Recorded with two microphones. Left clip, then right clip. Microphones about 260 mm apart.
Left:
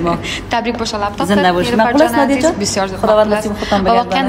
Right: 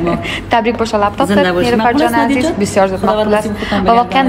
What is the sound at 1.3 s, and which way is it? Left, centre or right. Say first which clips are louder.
Speech: right 1 dB; left.